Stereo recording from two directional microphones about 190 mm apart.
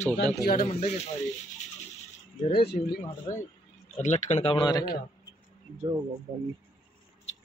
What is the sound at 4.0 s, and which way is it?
Speech, 40° left (ahead or behind).